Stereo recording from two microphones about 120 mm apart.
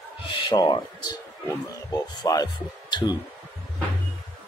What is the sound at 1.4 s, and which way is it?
Speech, 25° left (ahead or behind).